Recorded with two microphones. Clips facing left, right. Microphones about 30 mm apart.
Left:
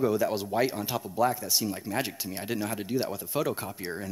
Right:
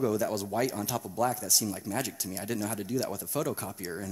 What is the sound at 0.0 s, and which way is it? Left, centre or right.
Speech, left.